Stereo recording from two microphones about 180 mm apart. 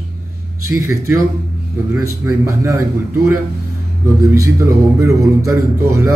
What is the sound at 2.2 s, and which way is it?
Music, 15° right (ahead or behind).